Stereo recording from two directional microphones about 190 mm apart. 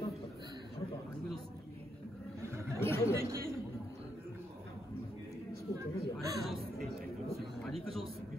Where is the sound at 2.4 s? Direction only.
15° right (ahead or behind).